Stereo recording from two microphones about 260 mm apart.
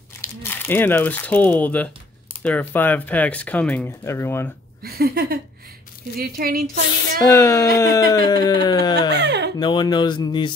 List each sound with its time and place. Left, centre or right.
0.2 s speech: centre
4.8 s a sound: right
7.2 s speech: centre
9.1 s speech: right
9.6 s speech: centre